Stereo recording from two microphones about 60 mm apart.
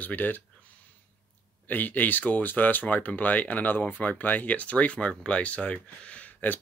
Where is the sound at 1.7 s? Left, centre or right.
Left.